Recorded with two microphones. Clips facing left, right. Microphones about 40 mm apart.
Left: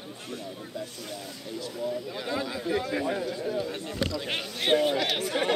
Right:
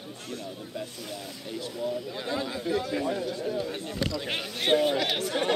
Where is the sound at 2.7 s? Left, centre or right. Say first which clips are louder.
Even; left.